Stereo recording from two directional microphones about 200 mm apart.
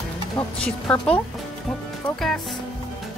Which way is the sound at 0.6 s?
5° left (ahead or behind).